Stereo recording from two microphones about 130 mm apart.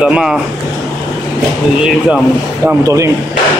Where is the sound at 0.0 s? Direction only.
5° right (ahead or behind).